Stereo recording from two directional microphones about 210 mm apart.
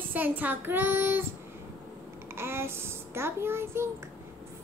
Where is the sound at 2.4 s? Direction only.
10° right (ahead or behind).